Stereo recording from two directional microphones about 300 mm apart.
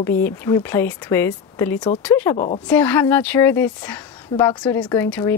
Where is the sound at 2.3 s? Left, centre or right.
Left.